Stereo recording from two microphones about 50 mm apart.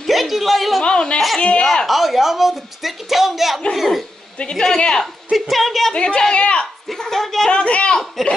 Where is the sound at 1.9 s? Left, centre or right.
Centre.